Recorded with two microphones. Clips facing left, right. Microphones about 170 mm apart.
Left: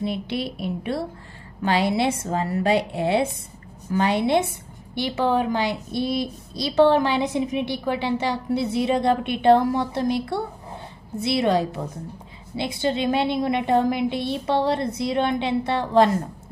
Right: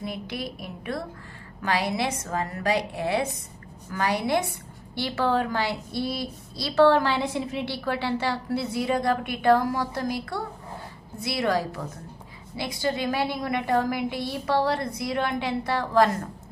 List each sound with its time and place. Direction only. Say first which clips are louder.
0.0 s a woman's voice: left 6 dB; 25° left (ahead or behind)